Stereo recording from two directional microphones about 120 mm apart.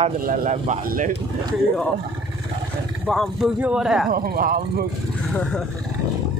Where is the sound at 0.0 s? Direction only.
85° right.